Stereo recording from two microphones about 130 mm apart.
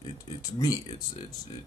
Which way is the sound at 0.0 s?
30° left (ahead or behind).